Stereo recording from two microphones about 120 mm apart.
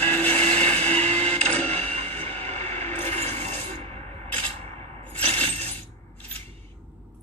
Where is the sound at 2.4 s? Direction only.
60° right (ahead or behind).